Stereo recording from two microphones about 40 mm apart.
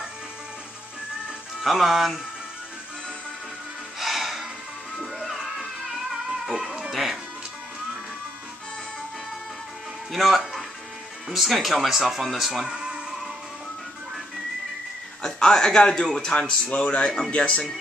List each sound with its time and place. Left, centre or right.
1.6 s speech: centre
4.0 s music: centre
6.5 s cat: centre
6.9 s music: centre
10.1 s speech: centre
12.7 s music: right
15.2 s speech: centre
16.6 s speech: left